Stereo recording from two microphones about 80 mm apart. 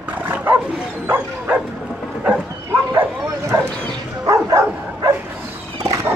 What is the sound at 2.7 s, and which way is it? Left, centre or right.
Bow-wow, right.